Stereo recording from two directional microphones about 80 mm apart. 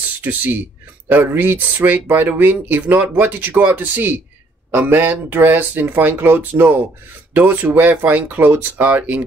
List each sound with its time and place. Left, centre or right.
0.2 s speech: right